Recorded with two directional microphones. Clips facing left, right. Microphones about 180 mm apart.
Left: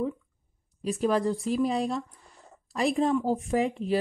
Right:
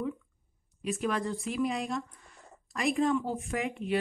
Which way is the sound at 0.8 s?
35° left (ahead or behind).